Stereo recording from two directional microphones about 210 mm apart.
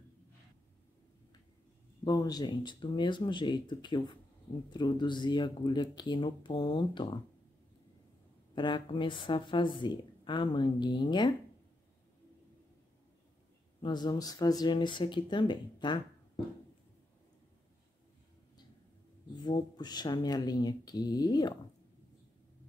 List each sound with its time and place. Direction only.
2.0 s speech: 20° left (ahead or behind)
8.5 s speech: 20° left (ahead or behind)
13.7 s speech: 20° left (ahead or behind)
19.4 s speech: 20° left (ahead or behind)